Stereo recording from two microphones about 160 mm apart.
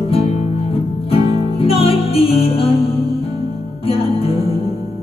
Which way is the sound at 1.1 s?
35° left (ahead or behind).